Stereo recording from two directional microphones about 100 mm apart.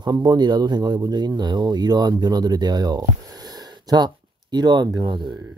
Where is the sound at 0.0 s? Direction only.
45° right (ahead or behind).